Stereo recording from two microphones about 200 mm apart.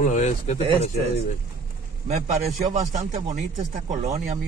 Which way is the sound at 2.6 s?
35° right (ahead or behind).